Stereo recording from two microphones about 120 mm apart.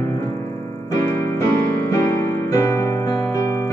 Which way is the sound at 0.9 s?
25° left (ahead or behind).